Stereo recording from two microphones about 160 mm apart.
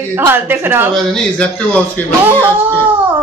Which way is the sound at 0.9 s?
5° left (ahead or behind).